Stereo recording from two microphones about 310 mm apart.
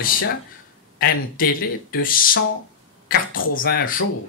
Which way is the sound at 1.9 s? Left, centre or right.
Left.